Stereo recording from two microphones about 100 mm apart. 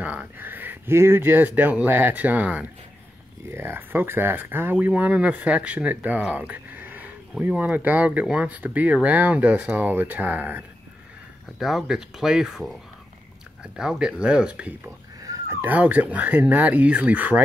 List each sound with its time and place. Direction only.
0.0 s speech: 15° right (ahead or behind)
11.6 s speech: 5° right (ahead or behind)
13.7 s speech: 5° right (ahead or behind)
15.2 s a sound: 30° right (ahead or behind)
15.7 s speech: 15° right (ahead or behind)